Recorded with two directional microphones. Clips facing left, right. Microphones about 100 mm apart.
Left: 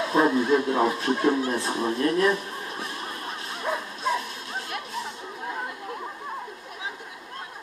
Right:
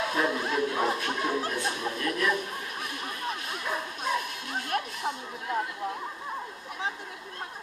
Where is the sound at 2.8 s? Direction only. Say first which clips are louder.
Left 1 dB; 30° left (ahead or behind).